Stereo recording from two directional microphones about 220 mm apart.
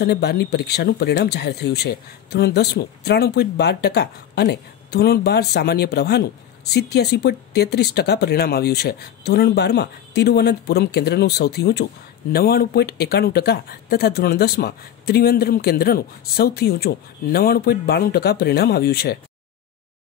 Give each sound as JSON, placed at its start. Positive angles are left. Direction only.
{"t": 0.0, "sound": "speech", "side_deg": 45}